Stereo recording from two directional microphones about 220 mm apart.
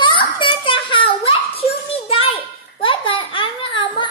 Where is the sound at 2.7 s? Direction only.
25° left (ahead or behind).